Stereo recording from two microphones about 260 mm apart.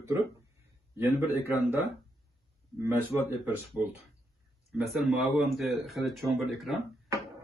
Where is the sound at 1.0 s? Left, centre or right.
Centre.